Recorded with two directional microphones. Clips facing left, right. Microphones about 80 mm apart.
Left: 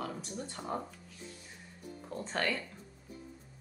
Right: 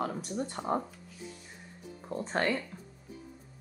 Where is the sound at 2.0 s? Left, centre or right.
Right.